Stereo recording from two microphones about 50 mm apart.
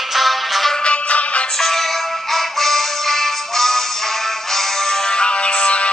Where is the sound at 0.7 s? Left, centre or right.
Left.